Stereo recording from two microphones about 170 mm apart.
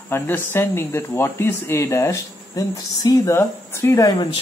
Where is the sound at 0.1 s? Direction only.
15° left (ahead or behind).